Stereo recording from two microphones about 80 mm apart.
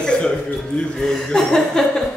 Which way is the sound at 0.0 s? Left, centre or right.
Centre.